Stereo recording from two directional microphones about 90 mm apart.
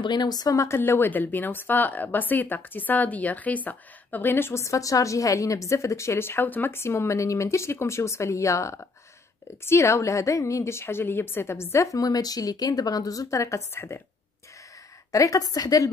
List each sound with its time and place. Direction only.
0.0 s a woman's voice: 55° left (ahead or behind); by 14.0 s 30° left (ahead or behind)
15.0 s a woman's voice: 40° left (ahead or behind)